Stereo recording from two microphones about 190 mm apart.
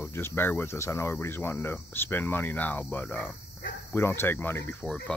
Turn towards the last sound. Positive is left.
turn(degrees=10)  # may be behind; listen again after turning